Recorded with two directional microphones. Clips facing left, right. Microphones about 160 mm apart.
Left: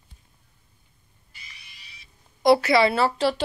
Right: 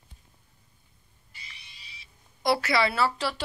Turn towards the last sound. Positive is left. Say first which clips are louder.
# left 6 dB
turn(degrees=25)  # may be behind; listen again after turning